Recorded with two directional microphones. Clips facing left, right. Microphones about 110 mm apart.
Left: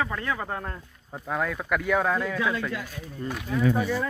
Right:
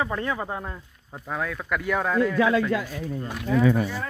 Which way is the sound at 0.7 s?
5° left (ahead or behind).